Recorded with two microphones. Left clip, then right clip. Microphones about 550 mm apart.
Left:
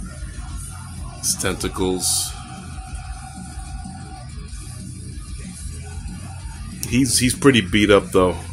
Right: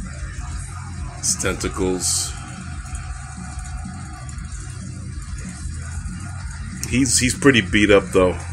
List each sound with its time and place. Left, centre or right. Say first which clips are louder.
1.2 s speech: right 1 dB; left
6.8 s speech: even; left